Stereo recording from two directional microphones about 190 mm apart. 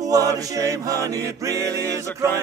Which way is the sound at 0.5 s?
15° right (ahead or behind).